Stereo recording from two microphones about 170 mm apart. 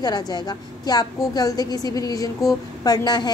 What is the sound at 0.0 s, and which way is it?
A woman's voice, 25° left (ahead or behind).